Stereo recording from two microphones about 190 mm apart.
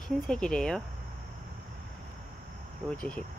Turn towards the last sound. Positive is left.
turn(degrees=5)  # may be behind; listen again after turning